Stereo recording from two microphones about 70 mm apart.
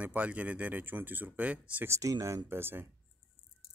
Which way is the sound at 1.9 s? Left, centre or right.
Right.